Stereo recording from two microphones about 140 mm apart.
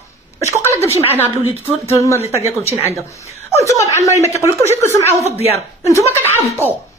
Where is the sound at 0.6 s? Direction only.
20° left (ahead or behind).